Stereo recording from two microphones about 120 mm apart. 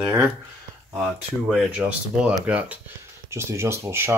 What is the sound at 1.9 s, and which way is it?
Speech, 10° right (ahead or behind).